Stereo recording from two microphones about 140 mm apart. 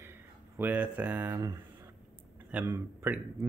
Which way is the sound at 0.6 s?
10° right (ahead or behind).